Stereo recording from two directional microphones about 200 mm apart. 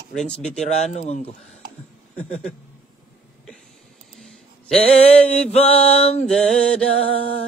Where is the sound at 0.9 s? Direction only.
35° left (ahead or behind).